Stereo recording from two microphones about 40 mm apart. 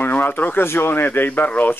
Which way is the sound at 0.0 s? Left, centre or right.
Left.